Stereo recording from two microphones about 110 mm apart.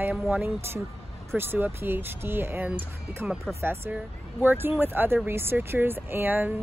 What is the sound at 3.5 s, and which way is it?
Speech, 25° right (ahead or behind).